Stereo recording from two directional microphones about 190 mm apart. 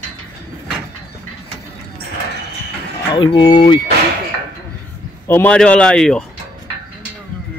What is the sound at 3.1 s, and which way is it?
Speech, 25° left (ahead or behind).